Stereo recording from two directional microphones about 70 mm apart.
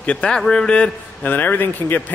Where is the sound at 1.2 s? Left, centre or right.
Left.